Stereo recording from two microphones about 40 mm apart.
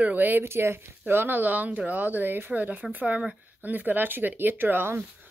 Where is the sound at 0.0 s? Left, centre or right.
Right.